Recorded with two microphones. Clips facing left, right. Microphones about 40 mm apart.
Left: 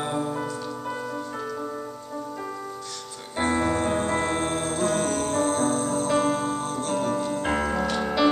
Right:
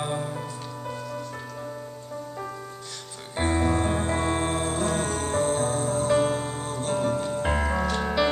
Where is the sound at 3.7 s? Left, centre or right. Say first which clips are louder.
Left 1 dB; centre.